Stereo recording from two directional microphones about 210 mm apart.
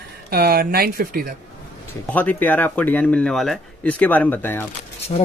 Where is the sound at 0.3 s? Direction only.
45° right (ahead or behind).